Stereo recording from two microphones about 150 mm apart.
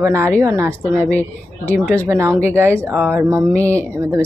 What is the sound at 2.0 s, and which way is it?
Speech, 20° right (ahead or behind).